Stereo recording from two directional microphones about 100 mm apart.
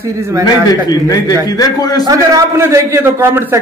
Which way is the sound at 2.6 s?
25° right (ahead or behind).